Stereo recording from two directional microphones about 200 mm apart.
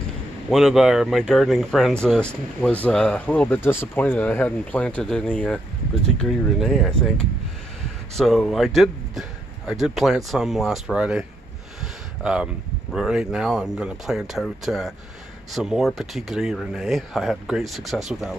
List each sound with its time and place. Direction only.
0.5 s speech: centre (ahead or behind)
11.8 s a sound: 5° right (ahead or behind)
12.9 s speech: 5° right (ahead or behind)